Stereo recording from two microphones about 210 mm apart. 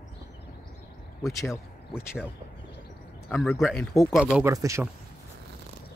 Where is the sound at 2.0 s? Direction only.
10° left (ahead or behind).